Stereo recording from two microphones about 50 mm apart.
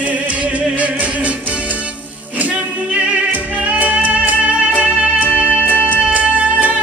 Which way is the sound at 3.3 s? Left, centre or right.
Right.